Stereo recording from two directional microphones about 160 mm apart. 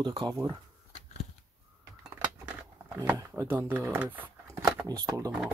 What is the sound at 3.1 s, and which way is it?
Speech, 20° right (ahead or behind).